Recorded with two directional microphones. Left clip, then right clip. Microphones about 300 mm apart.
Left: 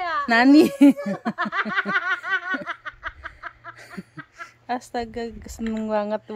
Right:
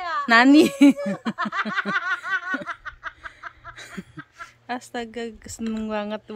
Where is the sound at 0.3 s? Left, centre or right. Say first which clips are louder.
Right 1 dB; centre.